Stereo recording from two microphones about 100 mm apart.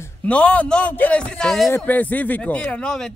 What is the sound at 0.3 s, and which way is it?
Speech, 10° left (ahead or behind).